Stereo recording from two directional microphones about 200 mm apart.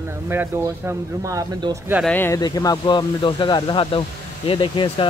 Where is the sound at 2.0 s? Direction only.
10° left (ahead or behind).